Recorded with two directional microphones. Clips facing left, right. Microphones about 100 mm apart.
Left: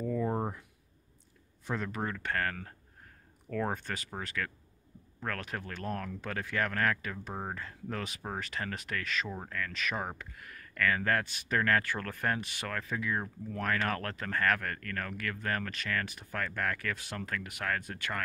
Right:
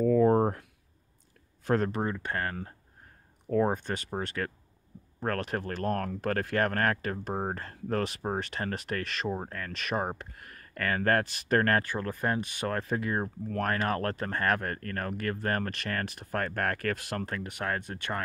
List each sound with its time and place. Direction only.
0.0 s a sound: 65° right (ahead or behind)
2.0 s speech: 25° right (ahead or behind)
5.5 s speech: 45° right (ahead or behind)
8.2 s speech: 35° right (ahead or behind)
11.9 s speech: 20° right (ahead or behind); by 17.3 s 55° right (ahead or behind)
17.3 s speech: 30° right (ahead or behind)